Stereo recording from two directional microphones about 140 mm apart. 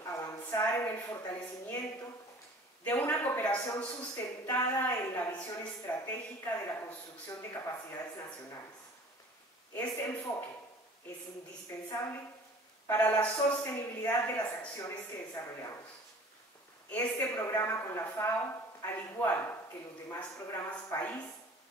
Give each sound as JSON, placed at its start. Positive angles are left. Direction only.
{"t": 0.0, "sound": "a sound", "side_deg": 20}
{"t": 2.8, "sound": "a man's voice", "side_deg": 15}
{"t": 9.8, "sound": "a man's voice", "side_deg": 15}
{"t": 12.8, "sound": "a man's voice", "side_deg": 15}
{"t": 16.9, "sound": "a man's voice", "side_deg": 15}